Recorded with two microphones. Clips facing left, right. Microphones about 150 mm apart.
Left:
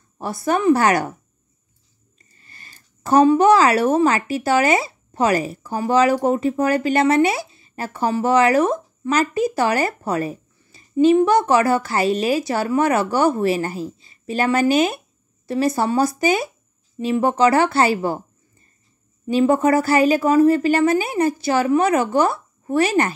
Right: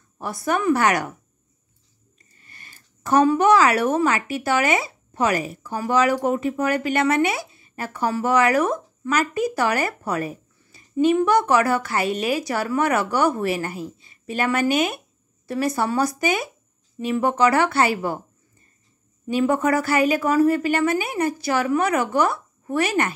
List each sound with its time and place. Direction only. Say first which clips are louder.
0.2 s a woman's voice: left 3 dB; 30° left (ahead or behind)
2.1 s a woman's voice: left 1 dB; 30° left (ahead or behind)
19.2 s a woman's voice: left 4 dB; 30° left (ahead or behind)